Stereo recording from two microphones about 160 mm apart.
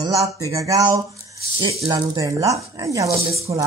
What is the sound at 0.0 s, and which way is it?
Speech, 20° right (ahead or behind).